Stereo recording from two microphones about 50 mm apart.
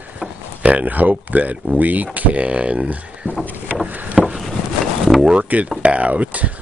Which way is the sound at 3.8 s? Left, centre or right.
Right.